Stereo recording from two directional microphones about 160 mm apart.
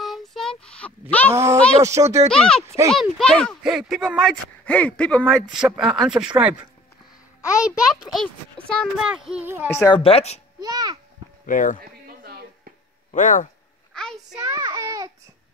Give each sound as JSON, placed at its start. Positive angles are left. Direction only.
{"t": 0.0, "sound": "child singing", "side_deg": 0}
{"t": 1.3, "sound": "speech", "side_deg": -20}
{"t": 2.3, "sound": "speech", "side_deg": 5}
{"t": 9.8, "sound": "a woman's voice", "side_deg": 35}
{"t": 10.6, "sound": "a child's voice", "side_deg": -25}
{"t": 11.4, "sound": "speech", "side_deg": 55}
{"t": 11.8, "sound": "chop", "side_deg": -70}
{"t": 13.1, "sound": "speech", "side_deg": 55}
{"t": 13.9, "sound": "child singing", "side_deg": 5}
{"t": 14.4, "sound": "child singing", "side_deg": -25}